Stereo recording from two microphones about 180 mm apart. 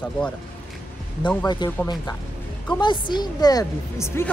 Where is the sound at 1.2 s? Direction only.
25° left (ahead or behind).